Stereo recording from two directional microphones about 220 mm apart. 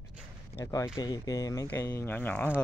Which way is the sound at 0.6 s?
15° left (ahead or behind).